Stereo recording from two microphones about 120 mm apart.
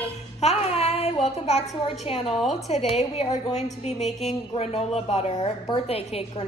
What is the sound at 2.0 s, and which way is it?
A woman's voice, 55° left (ahead or behind).